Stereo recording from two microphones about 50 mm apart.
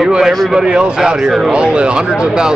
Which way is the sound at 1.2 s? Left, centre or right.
Centre.